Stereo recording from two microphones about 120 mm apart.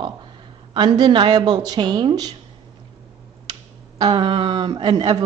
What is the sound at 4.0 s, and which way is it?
Speech, 40° right (ahead or behind).